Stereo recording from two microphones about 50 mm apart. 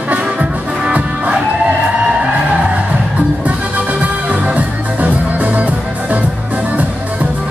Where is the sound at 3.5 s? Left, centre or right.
Right.